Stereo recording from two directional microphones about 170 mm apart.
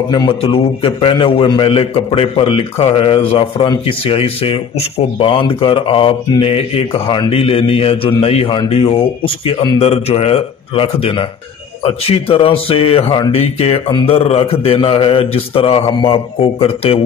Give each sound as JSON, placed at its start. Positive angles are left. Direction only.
{"t": 0.1, "sound": "a man's voice", "side_deg": 30}